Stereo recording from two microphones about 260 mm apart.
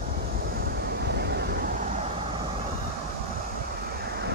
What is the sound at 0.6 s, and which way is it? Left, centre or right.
Vehicle, right.